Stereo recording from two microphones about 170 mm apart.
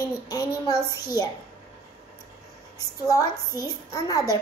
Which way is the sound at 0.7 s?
15° right (ahead or behind).